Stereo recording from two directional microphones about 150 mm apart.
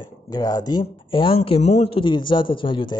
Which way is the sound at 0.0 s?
25° left (ahead or behind).